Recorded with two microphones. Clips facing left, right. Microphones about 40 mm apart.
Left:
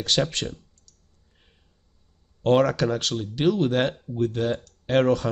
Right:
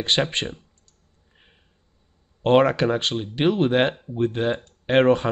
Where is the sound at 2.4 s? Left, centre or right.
Right.